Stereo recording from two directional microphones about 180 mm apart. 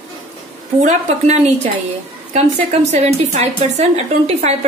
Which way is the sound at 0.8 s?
40° right (ahead or behind).